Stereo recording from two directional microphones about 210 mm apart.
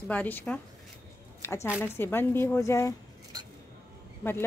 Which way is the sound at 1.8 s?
10° left (ahead or behind).